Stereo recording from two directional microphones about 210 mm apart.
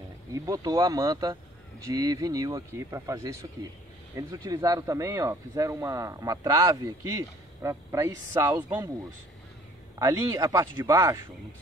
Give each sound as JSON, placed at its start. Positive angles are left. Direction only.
{"t": 0.3, "sound": "speech", "side_deg": -15}
{"t": 9.9, "sound": "speech", "side_deg": -15}